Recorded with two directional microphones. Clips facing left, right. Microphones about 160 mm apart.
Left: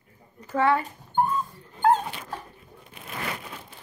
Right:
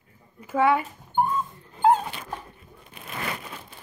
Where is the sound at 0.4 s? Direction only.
10° right (ahead or behind).